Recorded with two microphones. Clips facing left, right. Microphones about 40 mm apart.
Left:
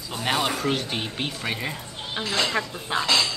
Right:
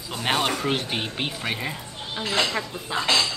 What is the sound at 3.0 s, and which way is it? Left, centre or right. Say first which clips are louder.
Speech: right 1 dB; right.